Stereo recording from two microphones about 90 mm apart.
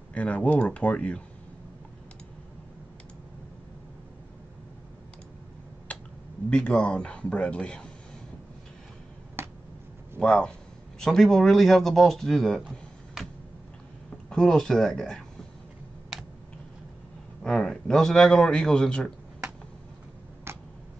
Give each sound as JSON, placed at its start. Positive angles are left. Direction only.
{"t": 0.1, "sound": "a man's voice", "side_deg": 15}
{"t": 5.9, "sound": "a sound", "side_deg": 15}
{"t": 6.5, "sound": "a man's voice", "side_deg": 10}
{"t": 9.4, "sound": "finger snapping", "side_deg": -30}
{"t": 10.1, "sound": "speech", "side_deg": 10}
{"t": 14.3, "sound": "speech", "side_deg": 5}
{"t": 17.4, "sound": "a man's voice", "side_deg": 5}
{"t": 20.5, "sound": "tick", "side_deg": -25}